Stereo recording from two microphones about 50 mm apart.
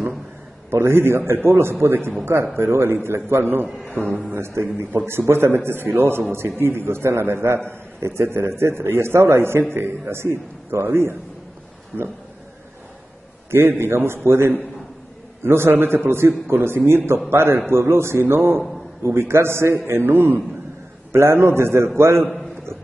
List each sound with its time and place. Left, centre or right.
0.7 s a man's voice: right
3.9 s speech: left
4.3 s a man's voice: right
13.5 s a man's voice: right
21.1 s a man's voice: right